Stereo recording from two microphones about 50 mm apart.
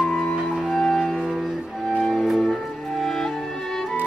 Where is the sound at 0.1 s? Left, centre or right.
Centre.